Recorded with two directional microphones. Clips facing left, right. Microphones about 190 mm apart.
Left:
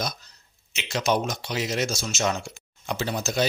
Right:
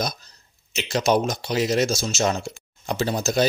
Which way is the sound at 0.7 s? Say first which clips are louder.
Right 4 dB; 35° right (ahead or behind).